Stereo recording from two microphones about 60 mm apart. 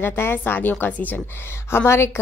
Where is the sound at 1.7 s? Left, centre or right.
Left.